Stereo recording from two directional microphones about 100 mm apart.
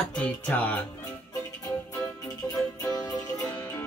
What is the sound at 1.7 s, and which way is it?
Music, 40° left (ahead or behind).